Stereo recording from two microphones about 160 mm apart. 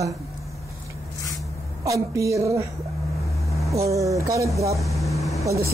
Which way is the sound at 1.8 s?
20° right (ahead or behind).